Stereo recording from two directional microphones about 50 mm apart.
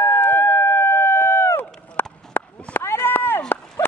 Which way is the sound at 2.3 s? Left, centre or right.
Left.